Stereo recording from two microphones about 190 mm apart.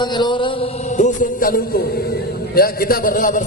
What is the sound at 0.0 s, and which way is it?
Mantra, 25° left (ahead or behind).